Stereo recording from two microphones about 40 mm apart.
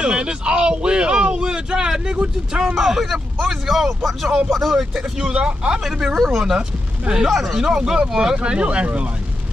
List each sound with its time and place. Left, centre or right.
0.0 s speech: right
2.7 s speech: centre
5.3 s speech: right
6.1 s speech: centre
7.7 s speech: centre
8.4 s speech: right